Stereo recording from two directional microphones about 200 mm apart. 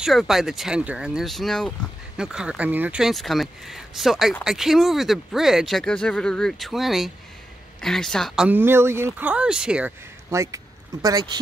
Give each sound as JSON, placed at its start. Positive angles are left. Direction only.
{"t": 0.0, "sound": "speech", "side_deg": 0}
{"t": 8.5, "sound": "speech", "side_deg": -10}